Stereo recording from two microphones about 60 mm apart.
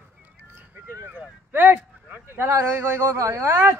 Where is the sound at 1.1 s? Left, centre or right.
Right.